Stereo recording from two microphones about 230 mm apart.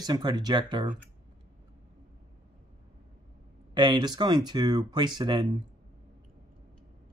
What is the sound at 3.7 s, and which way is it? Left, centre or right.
Speech, centre.